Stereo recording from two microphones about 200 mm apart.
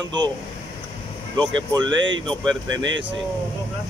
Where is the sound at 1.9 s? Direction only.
70° right (ahead or behind).